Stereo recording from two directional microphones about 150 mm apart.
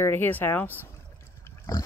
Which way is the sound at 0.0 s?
15° left (ahead or behind).